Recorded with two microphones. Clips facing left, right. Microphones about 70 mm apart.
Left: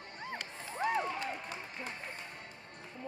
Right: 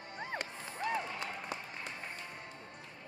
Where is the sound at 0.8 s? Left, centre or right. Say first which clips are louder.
Left 3 dB; left.